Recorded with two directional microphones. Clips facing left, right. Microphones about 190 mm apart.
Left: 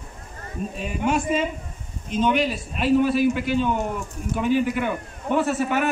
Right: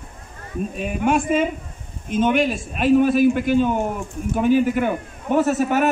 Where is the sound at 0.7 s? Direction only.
55° right (ahead or behind).